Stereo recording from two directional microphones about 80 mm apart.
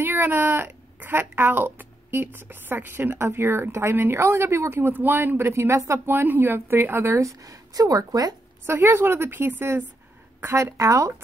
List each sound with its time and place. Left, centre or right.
0.0 s speech: right
8.6 s speech: right
10.4 s a woman's voice: right